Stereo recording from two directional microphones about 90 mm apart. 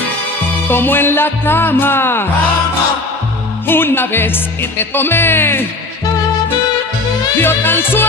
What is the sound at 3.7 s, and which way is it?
Music, 25° left (ahead or behind).